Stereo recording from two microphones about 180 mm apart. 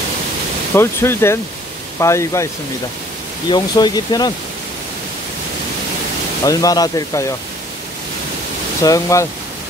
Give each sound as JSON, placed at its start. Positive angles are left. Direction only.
{"t": 0.7, "sound": "speech", "side_deg": 15}
{"t": 6.4, "sound": "speech", "side_deg": 20}
{"t": 8.8, "sound": "speech", "side_deg": 20}